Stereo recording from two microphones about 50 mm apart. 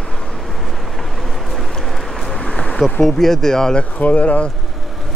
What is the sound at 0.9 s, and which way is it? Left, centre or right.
Vehicle, centre.